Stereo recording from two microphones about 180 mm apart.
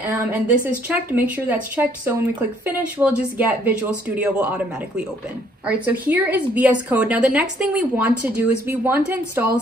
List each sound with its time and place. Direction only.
0.0 s a woman's voice: 10° right (ahead or behind)